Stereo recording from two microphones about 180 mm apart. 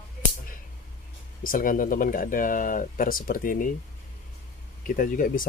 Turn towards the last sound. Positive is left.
turn(degrees=50)  # may be behind; listen again after turning